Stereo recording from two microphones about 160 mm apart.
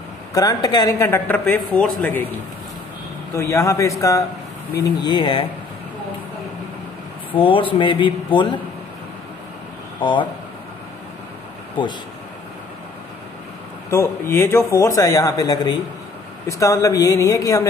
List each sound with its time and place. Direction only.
0.3 s speech: 20° left (ahead or behind)
3.3 s a man's voice: 20° left (ahead or behind); by 5.5 s 35° left (ahead or behind)
7.3 s a man's voice: 35° left (ahead or behind)
9.9 s speech: 30° left (ahead or behind)
13.8 s speech: 15° left (ahead or behind)